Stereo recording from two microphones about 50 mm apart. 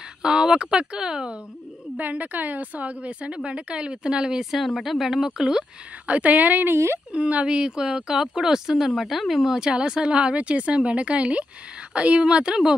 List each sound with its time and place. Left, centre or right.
0.2 s speech: centre
2.0 s a woman's voice: right; by 4.5 s centre
4.5 s speech: centre
6.0 s a woman's voice: right
6.7 s speech: right
7.1 s speech: right; by 9.6 s centre
9.6 s speech: centre